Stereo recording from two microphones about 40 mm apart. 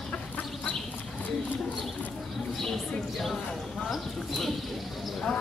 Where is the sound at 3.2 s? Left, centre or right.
Centre.